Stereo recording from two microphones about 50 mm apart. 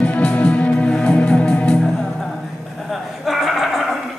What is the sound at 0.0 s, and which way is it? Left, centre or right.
Music, left.